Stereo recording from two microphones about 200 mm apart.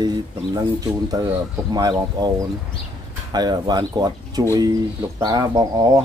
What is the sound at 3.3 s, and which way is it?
Speech, 20° right (ahead or behind).